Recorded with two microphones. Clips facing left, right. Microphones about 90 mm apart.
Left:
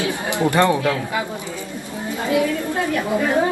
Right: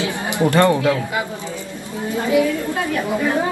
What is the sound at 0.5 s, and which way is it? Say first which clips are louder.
Speech: right 2 dB; 15° left (ahead or behind).